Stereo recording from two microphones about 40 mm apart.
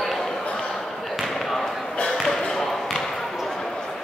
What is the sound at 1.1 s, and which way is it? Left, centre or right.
Basketball bounce, centre.